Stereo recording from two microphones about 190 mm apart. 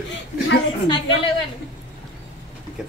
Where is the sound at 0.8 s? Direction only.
25° left (ahead or behind).